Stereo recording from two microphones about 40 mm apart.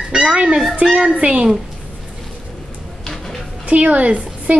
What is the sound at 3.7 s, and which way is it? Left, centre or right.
Speech, right.